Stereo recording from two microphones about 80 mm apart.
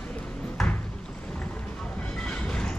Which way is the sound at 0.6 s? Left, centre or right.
Centre.